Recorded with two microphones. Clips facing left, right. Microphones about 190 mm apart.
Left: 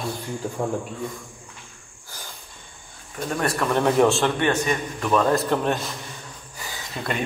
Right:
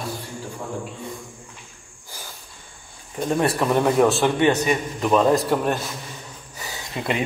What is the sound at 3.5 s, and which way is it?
Speech, 15° right (ahead or behind).